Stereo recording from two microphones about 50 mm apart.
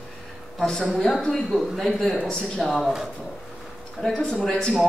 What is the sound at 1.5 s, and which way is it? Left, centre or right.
Speech, left.